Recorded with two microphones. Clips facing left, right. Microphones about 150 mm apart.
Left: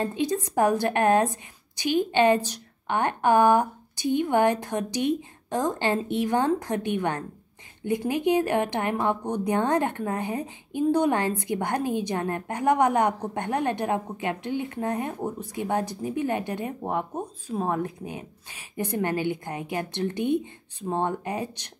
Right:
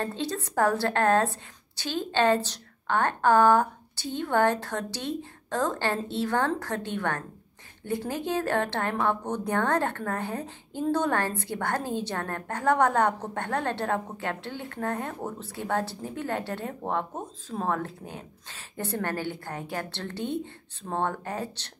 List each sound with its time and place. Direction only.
0.0 s a woman's voice: 15° left (ahead or behind)